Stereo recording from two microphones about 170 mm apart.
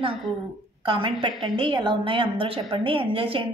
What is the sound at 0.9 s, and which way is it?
A woman's voice, 30° right (ahead or behind).